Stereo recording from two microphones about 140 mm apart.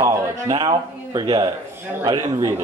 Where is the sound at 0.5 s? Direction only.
35° right (ahead or behind).